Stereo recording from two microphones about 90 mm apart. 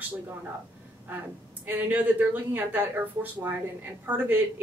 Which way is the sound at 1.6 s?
20° right (ahead or behind).